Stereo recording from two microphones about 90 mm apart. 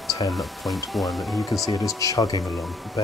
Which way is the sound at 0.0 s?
Centre (ahead or behind).